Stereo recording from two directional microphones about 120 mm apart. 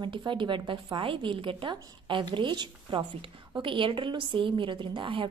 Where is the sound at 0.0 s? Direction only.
40° right (ahead or behind).